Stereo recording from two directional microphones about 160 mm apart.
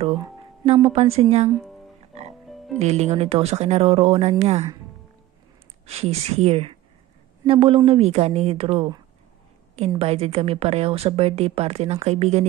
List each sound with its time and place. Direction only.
0.8 s a woman's voice: 40° right (ahead or behind)
2.5 s music: centre (ahead or behind)
2.8 s a woman's voice: 40° right (ahead or behind)
5.9 s a woman's voice: 40° right (ahead or behind)